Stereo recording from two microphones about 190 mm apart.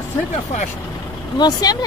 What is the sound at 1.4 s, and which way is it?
Speech, 20° left (ahead or behind).